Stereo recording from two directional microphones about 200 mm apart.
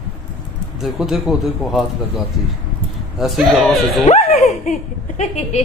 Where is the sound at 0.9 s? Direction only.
Centre (ahead or behind).